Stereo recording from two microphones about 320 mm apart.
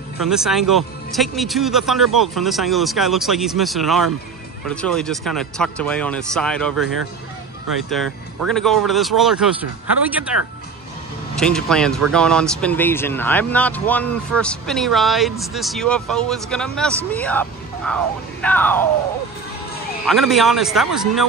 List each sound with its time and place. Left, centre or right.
0.2 s speech: centre
7.9 s speech: centre
11.3 s speech: centre
20.1 s speech: centre